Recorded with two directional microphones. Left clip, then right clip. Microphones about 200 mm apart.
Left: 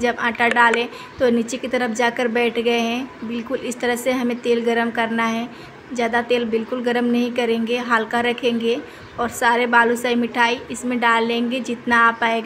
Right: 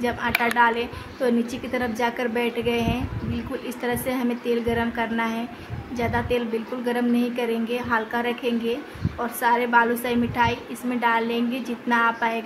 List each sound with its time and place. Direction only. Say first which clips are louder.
0.0 s a woman's voice: left 4 dB; 15° left (ahead or behind)